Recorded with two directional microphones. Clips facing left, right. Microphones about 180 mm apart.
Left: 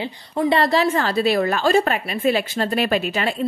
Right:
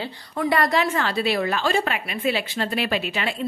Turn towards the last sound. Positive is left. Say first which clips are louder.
# left 4 dB
turn(degrees=45)  # may be behind; listen again after turning